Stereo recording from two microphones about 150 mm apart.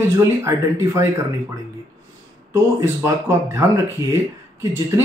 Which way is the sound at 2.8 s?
15° right (ahead or behind).